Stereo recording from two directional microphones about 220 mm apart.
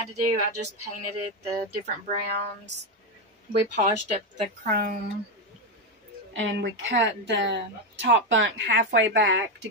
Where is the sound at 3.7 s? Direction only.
35° right (ahead or behind).